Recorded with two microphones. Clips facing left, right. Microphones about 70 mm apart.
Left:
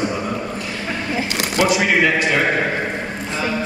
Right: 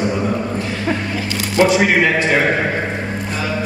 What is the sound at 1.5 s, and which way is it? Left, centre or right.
Speech, right.